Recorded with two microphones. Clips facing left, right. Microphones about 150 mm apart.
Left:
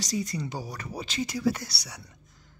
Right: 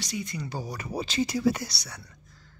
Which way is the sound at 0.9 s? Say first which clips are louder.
Right 5 dB; 30° right (ahead or behind).